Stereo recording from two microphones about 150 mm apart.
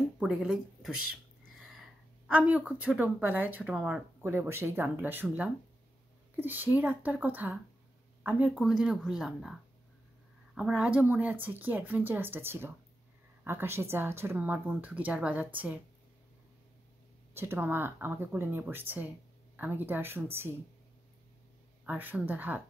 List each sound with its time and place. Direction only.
0.2 s a woman's voice: 5° right (ahead or behind)
17.3 s a woman's voice: 15° right (ahead or behind)
21.8 s a woman's voice: 10° right (ahead or behind)